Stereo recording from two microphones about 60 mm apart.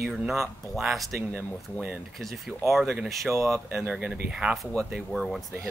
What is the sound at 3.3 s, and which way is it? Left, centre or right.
Speech, right.